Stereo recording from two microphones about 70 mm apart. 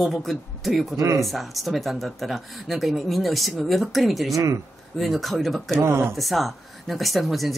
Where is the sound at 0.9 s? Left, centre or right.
Right.